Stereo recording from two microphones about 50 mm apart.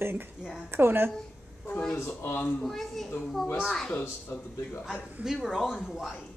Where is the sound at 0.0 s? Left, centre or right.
Right.